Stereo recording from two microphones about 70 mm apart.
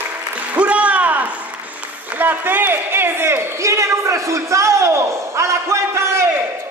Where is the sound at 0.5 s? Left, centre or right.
Centre; by 6.2 s right.